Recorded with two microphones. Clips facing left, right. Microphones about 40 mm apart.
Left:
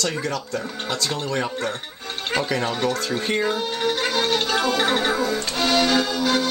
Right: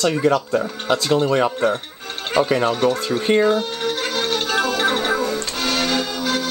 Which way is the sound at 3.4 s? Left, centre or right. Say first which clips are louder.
Right 4 dB; centre.